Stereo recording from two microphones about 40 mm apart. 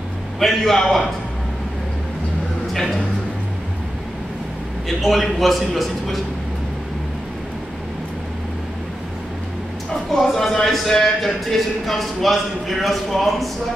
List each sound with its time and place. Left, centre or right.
0.4 s a man's voice: centre
2.7 s a man's voice: centre
4.8 s a man's voice: centre
10.1 s a man's voice: centre